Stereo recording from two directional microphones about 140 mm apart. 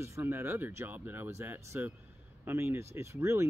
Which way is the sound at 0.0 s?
15° right (ahead or behind).